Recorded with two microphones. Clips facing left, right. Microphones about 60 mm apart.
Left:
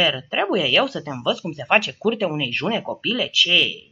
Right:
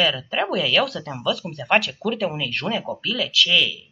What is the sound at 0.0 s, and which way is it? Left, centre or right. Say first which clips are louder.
Speech: left 1 dB; centre.